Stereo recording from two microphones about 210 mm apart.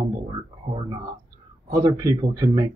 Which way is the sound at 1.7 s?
15° right (ahead or behind).